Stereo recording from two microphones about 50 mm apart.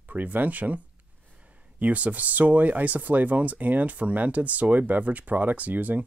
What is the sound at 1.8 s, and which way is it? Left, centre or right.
Speech, right.